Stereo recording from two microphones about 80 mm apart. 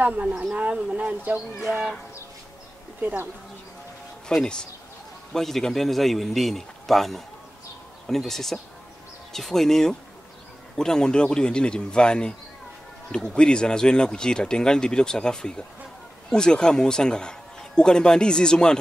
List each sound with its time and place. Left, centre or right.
0.0 s speech: centre
3.0 s speech: right
4.3 s a man's voice: centre